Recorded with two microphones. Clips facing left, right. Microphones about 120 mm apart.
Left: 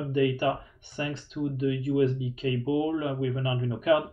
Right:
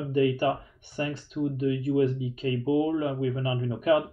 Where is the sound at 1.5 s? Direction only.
35° right (ahead or behind).